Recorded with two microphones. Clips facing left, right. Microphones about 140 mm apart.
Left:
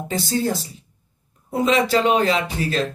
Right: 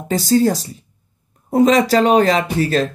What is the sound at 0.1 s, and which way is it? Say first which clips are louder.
Speech: right 8 dB; 40° right (ahead or behind).